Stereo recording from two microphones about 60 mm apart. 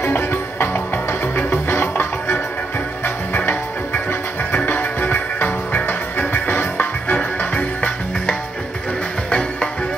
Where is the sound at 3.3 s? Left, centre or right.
Left.